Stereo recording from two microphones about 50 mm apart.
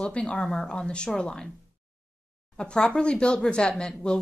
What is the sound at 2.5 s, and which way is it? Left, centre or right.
Speech, centre.